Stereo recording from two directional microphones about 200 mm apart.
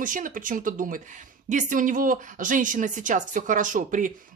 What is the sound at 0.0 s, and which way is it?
Speech, 40° right (ahead or behind).